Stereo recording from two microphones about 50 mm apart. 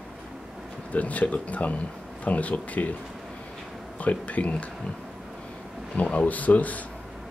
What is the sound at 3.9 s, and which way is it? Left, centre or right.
Speech, left.